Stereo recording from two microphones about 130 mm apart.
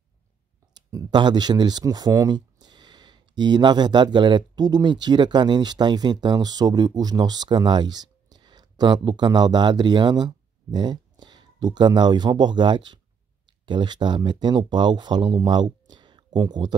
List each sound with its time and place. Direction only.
0.7 s speech: 35° right (ahead or behind)